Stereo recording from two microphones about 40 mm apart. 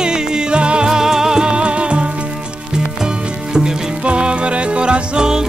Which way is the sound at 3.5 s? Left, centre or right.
Right.